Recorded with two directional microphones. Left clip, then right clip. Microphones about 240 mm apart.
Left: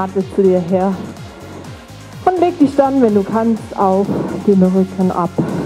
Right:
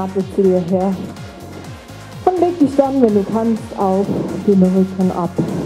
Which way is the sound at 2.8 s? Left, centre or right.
Centre.